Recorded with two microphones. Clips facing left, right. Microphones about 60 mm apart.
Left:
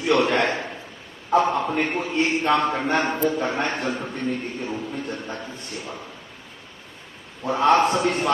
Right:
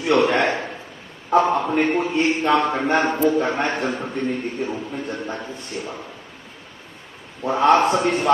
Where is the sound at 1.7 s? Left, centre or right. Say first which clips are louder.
Right 5 dB; right.